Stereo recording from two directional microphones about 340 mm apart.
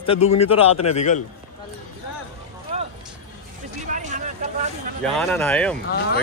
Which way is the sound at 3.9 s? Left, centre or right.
Right.